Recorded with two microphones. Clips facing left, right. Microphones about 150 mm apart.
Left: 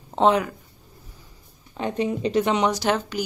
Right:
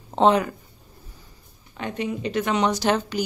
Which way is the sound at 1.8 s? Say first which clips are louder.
Left 4 dB; 30° left (ahead or behind).